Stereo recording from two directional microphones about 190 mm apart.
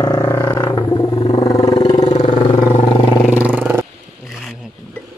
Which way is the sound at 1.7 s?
30° left (ahead or behind).